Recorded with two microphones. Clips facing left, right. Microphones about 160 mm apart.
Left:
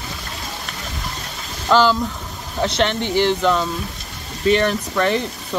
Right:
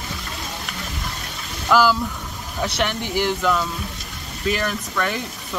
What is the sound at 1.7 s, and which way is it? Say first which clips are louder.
Speech: left 2 dB; 25° left (ahead or behind).